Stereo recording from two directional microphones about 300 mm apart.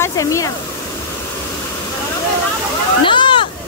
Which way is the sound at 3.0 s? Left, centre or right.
Centre.